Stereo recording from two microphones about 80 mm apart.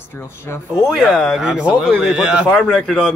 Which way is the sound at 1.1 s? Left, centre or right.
Centre.